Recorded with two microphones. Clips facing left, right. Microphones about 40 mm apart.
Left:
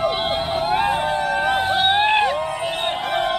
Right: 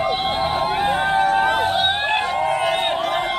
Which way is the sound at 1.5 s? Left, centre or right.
Centre.